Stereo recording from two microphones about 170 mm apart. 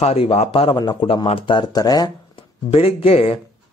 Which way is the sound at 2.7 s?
35° left (ahead or behind).